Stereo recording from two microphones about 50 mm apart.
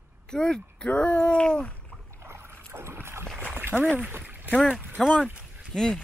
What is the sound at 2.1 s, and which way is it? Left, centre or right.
Rowboat, right.